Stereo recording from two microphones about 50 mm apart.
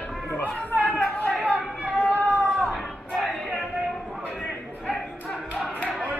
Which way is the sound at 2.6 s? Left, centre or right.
Centre.